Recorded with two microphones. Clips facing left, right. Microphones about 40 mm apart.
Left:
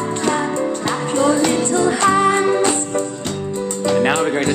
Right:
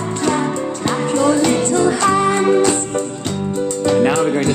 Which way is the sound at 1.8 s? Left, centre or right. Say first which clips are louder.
Left 2 dB; left.